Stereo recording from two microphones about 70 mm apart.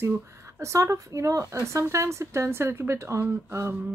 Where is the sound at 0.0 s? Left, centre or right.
Right.